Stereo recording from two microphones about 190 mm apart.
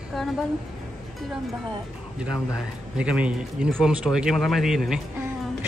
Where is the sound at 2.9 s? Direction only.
5° right (ahead or behind).